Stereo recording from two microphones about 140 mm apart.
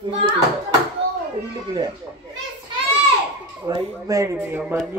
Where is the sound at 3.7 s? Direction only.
30° right (ahead or behind).